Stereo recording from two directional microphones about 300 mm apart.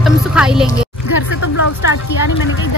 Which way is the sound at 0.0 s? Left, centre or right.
Centre.